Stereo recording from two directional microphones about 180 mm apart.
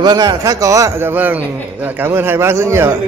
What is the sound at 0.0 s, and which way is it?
A man's voice, 20° right (ahead or behind).